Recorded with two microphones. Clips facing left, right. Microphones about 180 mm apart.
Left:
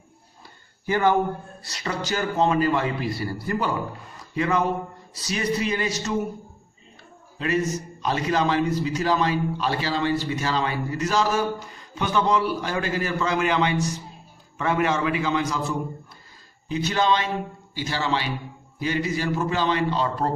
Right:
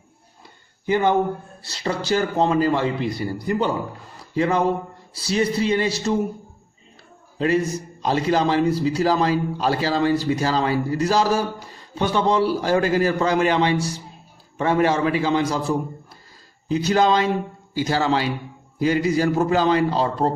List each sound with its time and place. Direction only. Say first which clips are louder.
0.8 s a man's voice: right 2 dB; 20° right (ahead or behind)
4.4 s a man's voice: right 3 dB; 30° right (ahead or behind)
7.3 s a man's voice: right 4 dB; 30° right (ahead or behind)